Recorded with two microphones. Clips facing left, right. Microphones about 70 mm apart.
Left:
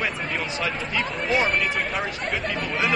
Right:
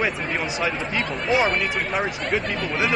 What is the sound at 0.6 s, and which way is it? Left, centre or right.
Speech, centre.